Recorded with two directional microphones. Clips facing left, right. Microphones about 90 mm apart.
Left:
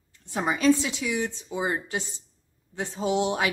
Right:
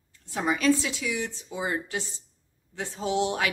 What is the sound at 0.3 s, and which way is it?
A woman's voice, 25° left (ahead or behind).